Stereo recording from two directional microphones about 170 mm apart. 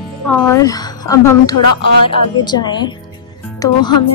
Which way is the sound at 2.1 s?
25° left (ahead or behind).